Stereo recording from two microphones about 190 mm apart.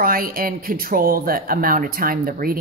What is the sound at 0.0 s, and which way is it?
Speech, 50° right (ahead or behind).